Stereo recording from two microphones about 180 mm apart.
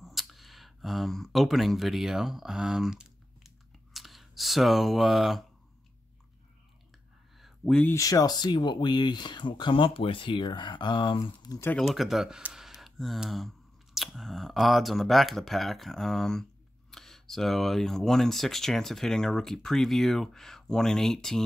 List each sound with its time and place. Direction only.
0.0 s a sound: centre (ahead or behind)
7.3 s speech: centre (ahead or behind); by 11.7 s 20° left (ahead or behind)
11.7 s speech: centre (ahead or behind)